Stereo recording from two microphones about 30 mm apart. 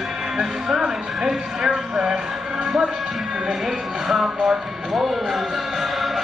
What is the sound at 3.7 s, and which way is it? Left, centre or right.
A man's voice, centre.